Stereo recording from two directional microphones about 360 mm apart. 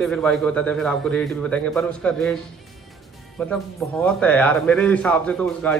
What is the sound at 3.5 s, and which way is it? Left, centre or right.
Speech, centre.